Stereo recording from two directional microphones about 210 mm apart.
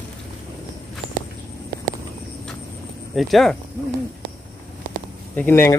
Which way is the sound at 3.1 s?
Centre (ahead or behind).